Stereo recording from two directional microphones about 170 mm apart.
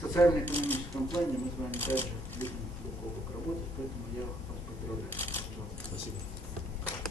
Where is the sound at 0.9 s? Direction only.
25° left (ahead or behind).